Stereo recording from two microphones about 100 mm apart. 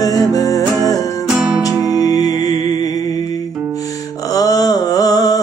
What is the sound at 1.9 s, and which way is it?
Music, 40° left (ahead or behind).